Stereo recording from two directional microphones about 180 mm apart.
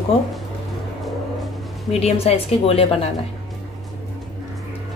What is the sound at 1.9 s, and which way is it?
A woman's voice, 35° left (ahead or behind).